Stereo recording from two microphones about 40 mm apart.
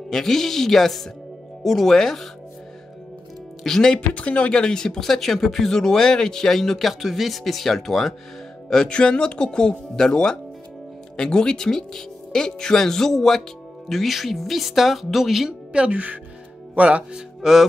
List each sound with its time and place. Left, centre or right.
0.1 s speech: centre
3.6 s speech: centre
3.9 s speech: left
4.6 s speech: centre
8.8 s speech: left; by 15.5 s centre
15.7 s speech: right
17.4 s speech: centre